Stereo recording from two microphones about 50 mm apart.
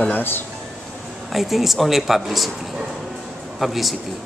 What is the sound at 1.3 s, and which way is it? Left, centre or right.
Speech, centre.